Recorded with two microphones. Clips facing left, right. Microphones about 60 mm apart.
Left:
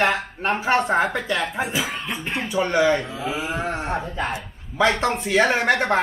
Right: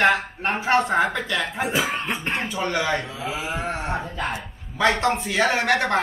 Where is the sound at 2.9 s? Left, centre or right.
Centre.